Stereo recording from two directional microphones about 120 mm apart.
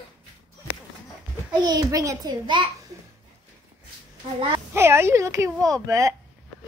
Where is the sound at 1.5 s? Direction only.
35° right (ahead or behind).